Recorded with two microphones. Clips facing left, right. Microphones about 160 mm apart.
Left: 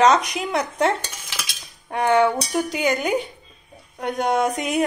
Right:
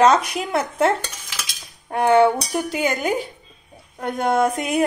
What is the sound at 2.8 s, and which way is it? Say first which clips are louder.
Speech: even; centre (ahead or behind).